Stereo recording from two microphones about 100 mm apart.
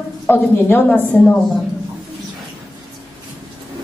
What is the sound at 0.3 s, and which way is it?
A woman's voice, 20° left (ahead or behind).